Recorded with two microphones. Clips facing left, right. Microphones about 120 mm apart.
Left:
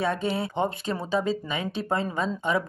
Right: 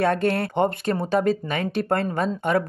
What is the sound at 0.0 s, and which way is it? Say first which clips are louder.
Speech: right 5 dB; 70° right (ahead or behind).